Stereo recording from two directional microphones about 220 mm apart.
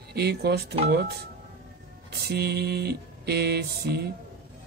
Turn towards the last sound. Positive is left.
turn(degrees=-45)  # may be behind; listen again after turning